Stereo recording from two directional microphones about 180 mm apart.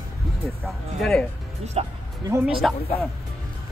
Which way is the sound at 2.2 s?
15° right (ahead or behind).